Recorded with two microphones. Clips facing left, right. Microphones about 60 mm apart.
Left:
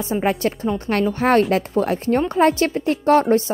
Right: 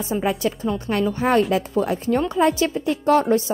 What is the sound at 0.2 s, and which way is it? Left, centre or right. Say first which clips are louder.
Speech: left 3 dB; left.